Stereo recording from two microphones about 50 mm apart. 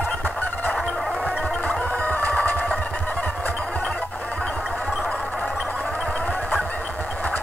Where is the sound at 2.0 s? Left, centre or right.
Left.